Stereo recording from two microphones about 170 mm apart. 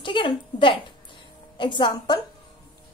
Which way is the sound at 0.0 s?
30° left (ahead or behind).